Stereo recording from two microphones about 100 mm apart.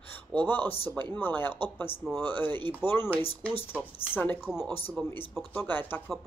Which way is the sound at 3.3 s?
70° left (ahead or behind).